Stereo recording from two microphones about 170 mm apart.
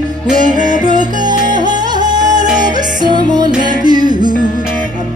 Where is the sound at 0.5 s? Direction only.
45° right (ahead or behind).